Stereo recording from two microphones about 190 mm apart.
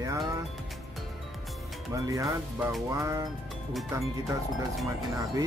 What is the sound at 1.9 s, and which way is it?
Music, 15° right (ahead or behind).